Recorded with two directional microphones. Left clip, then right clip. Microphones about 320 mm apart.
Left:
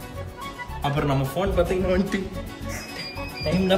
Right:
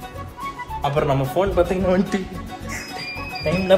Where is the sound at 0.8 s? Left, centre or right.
Centre.